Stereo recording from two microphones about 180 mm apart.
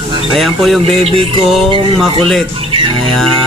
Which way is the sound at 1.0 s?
30° right (ahead or behind).